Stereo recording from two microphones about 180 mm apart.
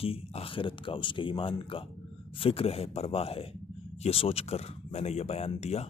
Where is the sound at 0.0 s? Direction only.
30° left (ahead or behind).